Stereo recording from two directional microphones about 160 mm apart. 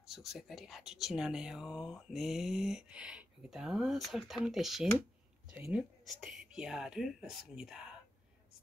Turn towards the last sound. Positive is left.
turn(degrees=-5)  # may be behind; listen again after turning